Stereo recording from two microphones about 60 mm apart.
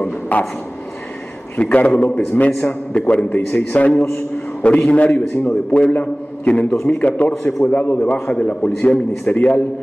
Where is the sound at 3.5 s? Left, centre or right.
Left.